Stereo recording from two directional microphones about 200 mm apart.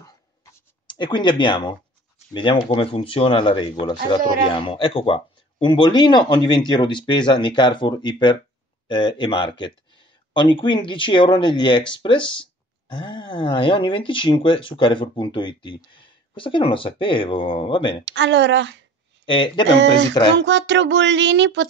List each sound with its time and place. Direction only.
0.8 s speech: 25° left (ahead or behind)
18.0 s child singing: 60° right (ahead or behind)
19.2 s speech: 25° left (ahead or behind)
20.3 s child singing: 60° right (ahead or behind)